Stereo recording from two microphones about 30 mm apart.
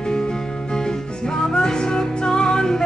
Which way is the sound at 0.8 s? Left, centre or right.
Left.